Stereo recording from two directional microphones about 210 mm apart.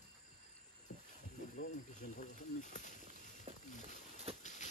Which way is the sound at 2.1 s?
35° left (ahead or behind).